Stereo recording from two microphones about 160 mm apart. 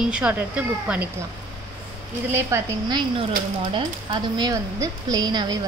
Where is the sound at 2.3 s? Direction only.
15° right (ahead or behind).